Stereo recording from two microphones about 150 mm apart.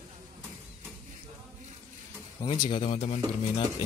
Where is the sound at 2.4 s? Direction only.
35° left (ahead or behind).